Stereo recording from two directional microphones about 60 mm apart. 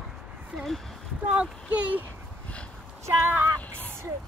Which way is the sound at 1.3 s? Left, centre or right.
Centre.